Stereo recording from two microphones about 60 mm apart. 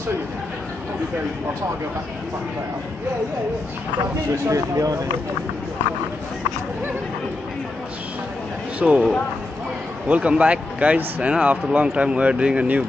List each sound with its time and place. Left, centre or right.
4.5 s speech: right
8.7 s speech: centre